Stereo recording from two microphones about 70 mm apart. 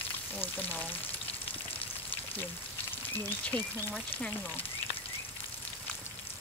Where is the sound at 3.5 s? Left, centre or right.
Left.